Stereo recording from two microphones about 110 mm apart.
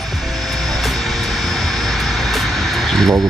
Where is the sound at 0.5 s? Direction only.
Centre (ahead or behind).